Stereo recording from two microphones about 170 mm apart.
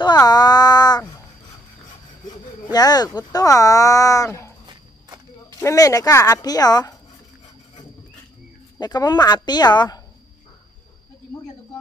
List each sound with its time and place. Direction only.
0.0 s a sound: 25° left (ahead or behind)
2.2 s speech: 25° left (ahead or behind)
5.6 s speech: 20° left (ahead or behind)
8.7 s speech: 25° left (ahead or behind)